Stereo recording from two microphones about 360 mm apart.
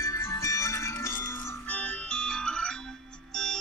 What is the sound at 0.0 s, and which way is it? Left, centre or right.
Music, centre.